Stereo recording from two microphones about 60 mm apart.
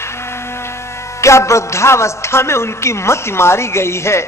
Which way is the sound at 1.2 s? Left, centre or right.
Left.